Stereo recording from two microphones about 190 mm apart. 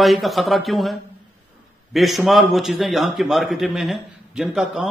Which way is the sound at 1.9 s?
Centre (ahead or behind).